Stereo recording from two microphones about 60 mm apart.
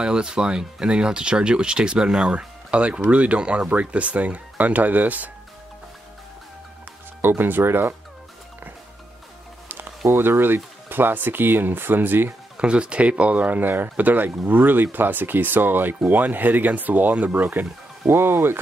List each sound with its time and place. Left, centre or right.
0.0 s speech: centre
7.2 s speech: right
9.7 s speech: right
12.5 s speech: centre
17.5 s speech: right